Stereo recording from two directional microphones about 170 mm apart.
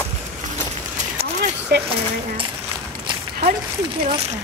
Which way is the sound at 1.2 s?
35° right (ahead or behind).